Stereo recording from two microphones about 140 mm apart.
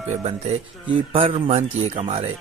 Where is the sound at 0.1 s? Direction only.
50° right (ahead or behind).